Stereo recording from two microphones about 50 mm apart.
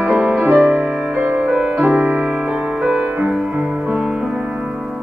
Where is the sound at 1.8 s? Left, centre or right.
Right.